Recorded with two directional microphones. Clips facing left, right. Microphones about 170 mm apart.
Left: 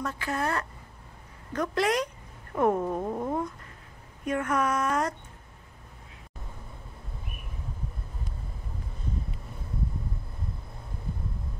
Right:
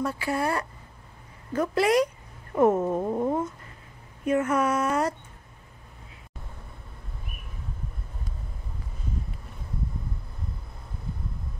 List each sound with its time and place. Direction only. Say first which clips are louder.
0.0 s speech: right 3 dB; 10° right (ahead or behind)